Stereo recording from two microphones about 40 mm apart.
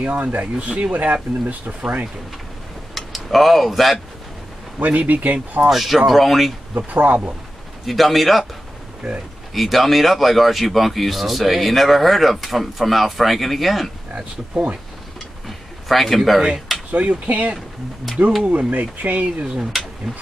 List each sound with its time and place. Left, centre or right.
0.0 s speech: right
2.9 s speech: centre
4.7 s speech: right
5.7 s speech: centre
6.9 s speech: right
7.8 s speech: centre
15.9 s speech: centre
16.2 s speech: centre
16.9 s speech: right
19.4 s speech: centre